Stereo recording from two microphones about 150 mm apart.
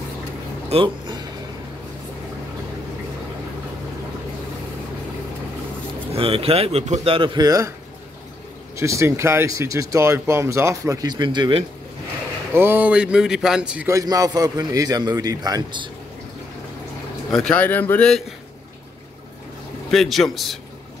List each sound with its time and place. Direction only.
0.7 s a sound: 35° right (ahead or behind)
6.1 s speech: 40° right (ahead or behind); by 7.7 s 25° right (ahead or behind)
8.7 s speech: 20° right (ahead or behind)
12.5 s speech: 15° right (ahead or behind)
13.8 s speech: 20° right (ahead or behind)
17.3 s speech: 5° left (ahead or behind)
19.9 s a man's voice: centre (ahead or behind)